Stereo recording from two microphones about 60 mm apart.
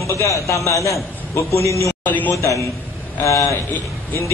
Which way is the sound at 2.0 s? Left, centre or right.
Left.